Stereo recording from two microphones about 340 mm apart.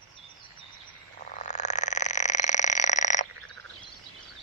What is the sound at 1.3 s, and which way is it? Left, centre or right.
Frog, left.